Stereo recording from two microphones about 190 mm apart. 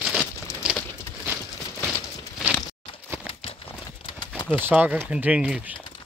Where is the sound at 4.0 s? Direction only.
25° left (ahead or behind).